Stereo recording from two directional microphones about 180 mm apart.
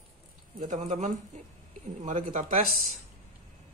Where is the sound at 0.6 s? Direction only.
45° right (ahead or behind).